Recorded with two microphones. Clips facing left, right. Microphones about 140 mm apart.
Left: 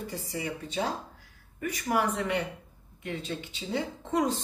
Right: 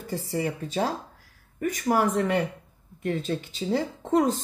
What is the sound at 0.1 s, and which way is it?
Speech, 50° right (ahead or behind).